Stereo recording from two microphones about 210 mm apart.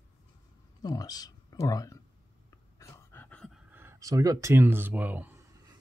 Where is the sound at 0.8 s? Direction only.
20° left (ahead or behind).